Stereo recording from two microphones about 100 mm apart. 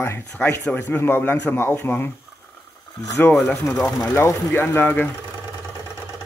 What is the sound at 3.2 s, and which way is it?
A man's voice, 15° left (ahead or behind).